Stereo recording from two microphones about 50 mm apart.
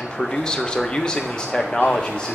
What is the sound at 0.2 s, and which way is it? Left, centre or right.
Speech, centre.